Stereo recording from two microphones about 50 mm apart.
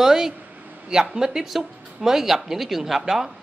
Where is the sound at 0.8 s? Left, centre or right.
Centre.